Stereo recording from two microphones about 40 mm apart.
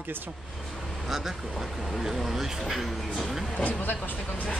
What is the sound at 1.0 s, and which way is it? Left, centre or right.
Speech, centre.